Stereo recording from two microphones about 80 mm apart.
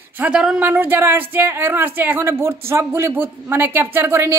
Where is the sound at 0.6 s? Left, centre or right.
Right.